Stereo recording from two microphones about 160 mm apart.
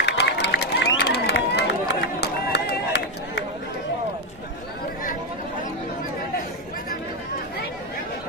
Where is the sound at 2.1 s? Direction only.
90° left.